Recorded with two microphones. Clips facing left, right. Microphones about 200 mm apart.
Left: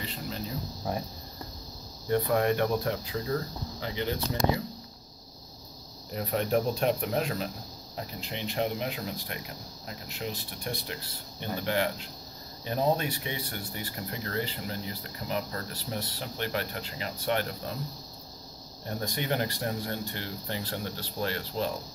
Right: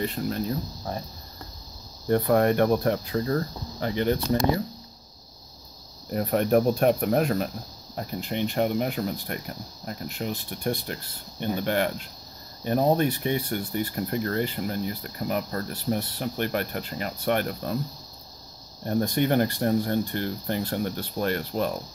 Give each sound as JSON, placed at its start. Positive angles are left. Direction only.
{"t": 0.0, "sound": "speech", "side_deg": -55}
{"t": 2.0, "sound": "speech", "side_deg": -50}
{"t": 6.1, "sound": "speech", "side_deg": -50}
{"t": 18.9, "sound": "speech", "side_deg": -50}